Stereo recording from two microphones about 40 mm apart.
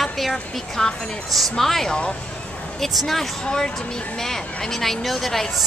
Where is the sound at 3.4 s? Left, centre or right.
Centre.